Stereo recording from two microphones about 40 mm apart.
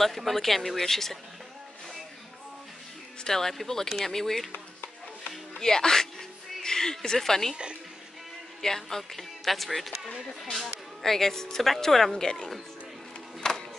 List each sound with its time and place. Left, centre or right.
0.0 s speech: centre
3.3 s speech: centre
5.6 s speech: centre
8.5 s speech: centre
13.4 s music: centre